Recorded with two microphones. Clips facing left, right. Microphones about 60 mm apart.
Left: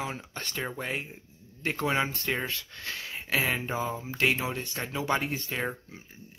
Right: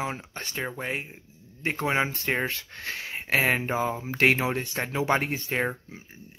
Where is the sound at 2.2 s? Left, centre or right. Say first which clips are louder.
Right 4 dB; right.